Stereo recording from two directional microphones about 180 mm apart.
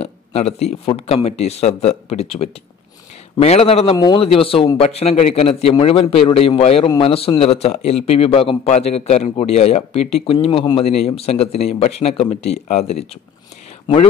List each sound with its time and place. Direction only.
0.0 s a man's voice: 35° left (ahead or behind)